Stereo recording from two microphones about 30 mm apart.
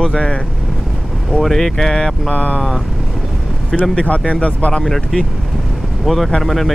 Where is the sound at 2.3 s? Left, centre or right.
Left.